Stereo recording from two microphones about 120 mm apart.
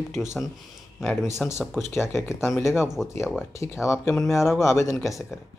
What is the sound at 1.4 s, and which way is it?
Speech, 5° left (ahead or behind).